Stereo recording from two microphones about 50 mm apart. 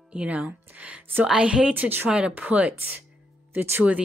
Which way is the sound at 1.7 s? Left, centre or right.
Right.